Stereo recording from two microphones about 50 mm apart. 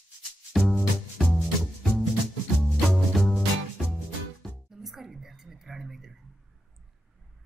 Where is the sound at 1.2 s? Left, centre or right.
Right.